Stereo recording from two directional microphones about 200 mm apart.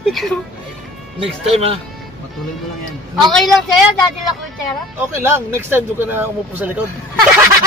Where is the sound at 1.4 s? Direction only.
30° right (ahead or behind).